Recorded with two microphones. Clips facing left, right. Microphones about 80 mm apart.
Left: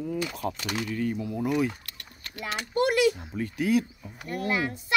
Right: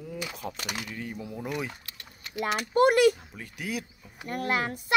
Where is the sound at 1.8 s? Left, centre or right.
Centre.